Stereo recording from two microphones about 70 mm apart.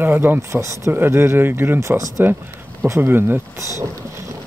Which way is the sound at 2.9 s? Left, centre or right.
Right.